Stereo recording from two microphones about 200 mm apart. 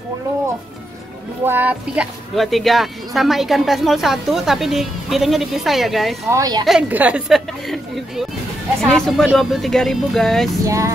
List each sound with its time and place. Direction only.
1.4 s speech: 10° right (ahead or behind)
6.3 s speech: 20° right (ahead or behind)
6.6 s speech: 5° right (ahead or behind)
10.6 s vehicle: 15° right (ahead or behind)